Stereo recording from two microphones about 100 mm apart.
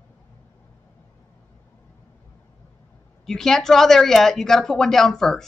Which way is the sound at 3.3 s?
5° left (ahead or behind).